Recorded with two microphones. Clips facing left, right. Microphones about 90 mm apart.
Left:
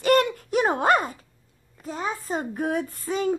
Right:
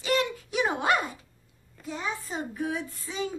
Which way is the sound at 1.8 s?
40° left (ahead or behind).